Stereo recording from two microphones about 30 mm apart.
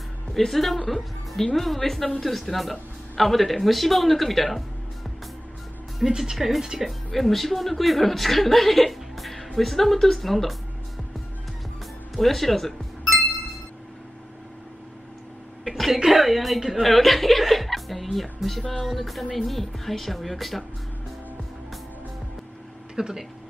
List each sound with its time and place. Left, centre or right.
0.4 s a woman's voice: centre
6.0 s speech: centre
6.3 s speech: centre
6.8 s speech: centre
7.2 s a woman's voice: centre
12.2 s music: centre
15.7 s cough: centre
16.1 s speech: centre
16.8 s speech: centre
22.9 s speech: centre